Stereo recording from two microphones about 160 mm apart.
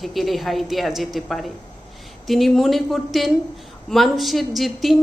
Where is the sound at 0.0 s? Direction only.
Centre (ahead or behind).